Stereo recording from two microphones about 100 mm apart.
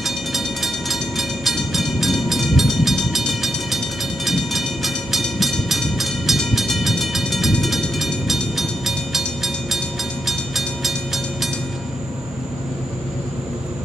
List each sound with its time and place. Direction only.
0.0 s train: centre (ahead or behind)